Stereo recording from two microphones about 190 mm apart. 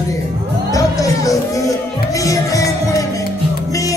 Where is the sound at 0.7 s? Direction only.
15° left (ahead or behind).